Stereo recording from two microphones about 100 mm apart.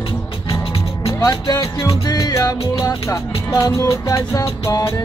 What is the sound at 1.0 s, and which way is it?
Music, 35° left (ahead or behind).